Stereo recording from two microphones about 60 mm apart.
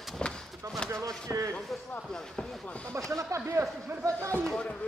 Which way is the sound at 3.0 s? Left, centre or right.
Right.